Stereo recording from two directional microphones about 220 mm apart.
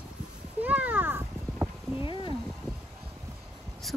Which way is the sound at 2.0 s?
20° left (ahead or behind).